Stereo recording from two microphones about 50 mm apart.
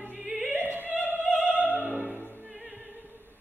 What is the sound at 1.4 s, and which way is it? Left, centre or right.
Opera, right.